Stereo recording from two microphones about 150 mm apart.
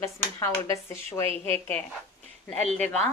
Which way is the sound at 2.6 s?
50° right (ahead or behind).